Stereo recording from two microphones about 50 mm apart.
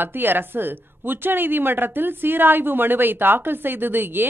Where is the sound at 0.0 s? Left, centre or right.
Right.